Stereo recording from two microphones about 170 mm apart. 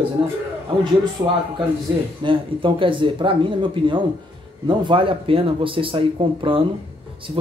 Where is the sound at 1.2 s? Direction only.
20° right (ahead or behind).